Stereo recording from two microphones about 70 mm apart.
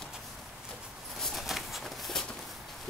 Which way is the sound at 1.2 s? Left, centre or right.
Centre.